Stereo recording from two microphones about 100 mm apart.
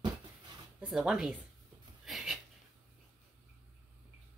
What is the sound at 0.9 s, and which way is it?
Speech, 5° right (ahead or behind).